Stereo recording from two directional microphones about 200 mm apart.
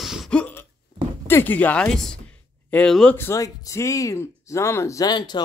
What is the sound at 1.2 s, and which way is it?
Speech, 10° left (ahead or behind).